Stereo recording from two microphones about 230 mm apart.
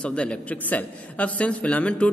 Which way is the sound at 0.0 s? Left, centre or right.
Centre.